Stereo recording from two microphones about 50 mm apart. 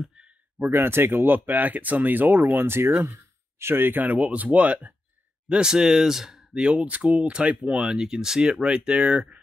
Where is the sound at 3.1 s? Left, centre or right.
Right.